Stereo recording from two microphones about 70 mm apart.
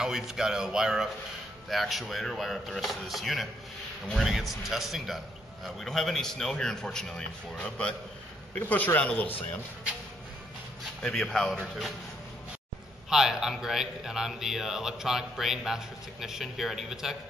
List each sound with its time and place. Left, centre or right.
0.0 s a man's voice: centre
8.5 s speech: left
11.0 s speech: centre
11.5 s speech: centre
13.1 s speech: centre